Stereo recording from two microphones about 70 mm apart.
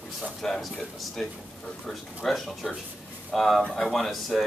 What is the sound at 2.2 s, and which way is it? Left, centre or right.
Speech, centre.